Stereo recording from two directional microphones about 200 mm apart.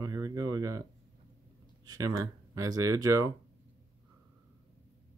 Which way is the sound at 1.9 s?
20° right (ahead or behind).